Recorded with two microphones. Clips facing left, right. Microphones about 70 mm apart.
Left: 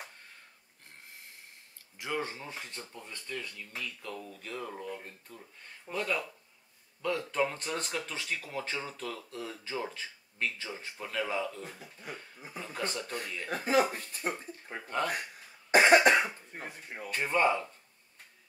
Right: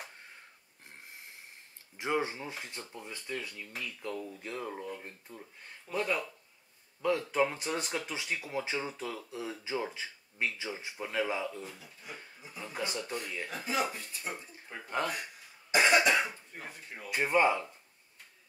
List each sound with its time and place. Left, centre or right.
2.0 s speech: right
11.8 s a man's voice: left
12.7 s speech: centre
13.5 s speech: left
15.7 s cough: left
16.6 s speech: left
17.1 s speech: centre